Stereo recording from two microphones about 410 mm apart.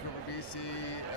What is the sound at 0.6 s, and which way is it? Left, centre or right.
Speech, left.